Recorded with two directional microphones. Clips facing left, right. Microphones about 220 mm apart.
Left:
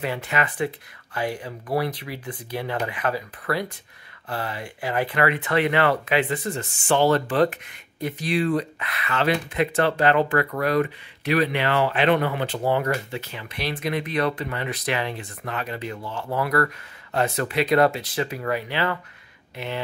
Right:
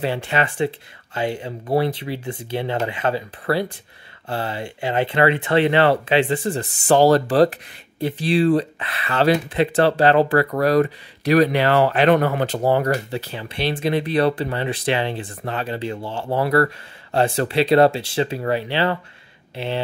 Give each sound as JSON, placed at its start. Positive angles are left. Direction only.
{"t": 0.0, "sound": "speech", "side_deg": -30}